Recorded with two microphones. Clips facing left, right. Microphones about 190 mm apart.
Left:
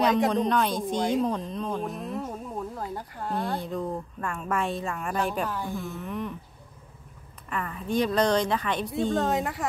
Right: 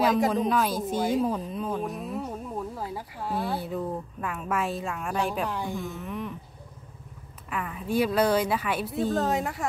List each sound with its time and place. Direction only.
0.0 s a woman's voice: centre (ahead or behind)
5.5 s a woman's voice: 15° right (ahead or behind)
5.8 s a woman's voice: centre (ahead or behind)
7.4 s a woman's voice: 5° right (ahead or behind)